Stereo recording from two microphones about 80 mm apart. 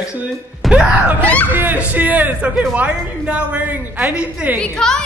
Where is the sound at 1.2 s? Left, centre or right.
Centre.